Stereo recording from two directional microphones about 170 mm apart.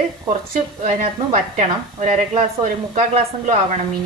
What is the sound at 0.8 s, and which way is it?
A woman's voice, 45° right (ahead or behind).